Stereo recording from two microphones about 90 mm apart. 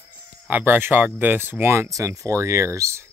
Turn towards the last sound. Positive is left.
turn(degrees=-30)  # may be behind; listen again after turning